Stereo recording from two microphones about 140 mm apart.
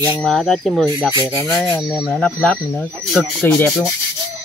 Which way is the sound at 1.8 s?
5° right (ahead or behind).